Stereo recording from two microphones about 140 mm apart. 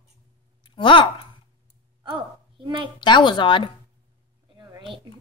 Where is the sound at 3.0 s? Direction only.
35° left (ahead or behind).